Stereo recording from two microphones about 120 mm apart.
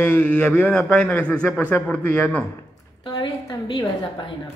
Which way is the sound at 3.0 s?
40° left (ahead or behind).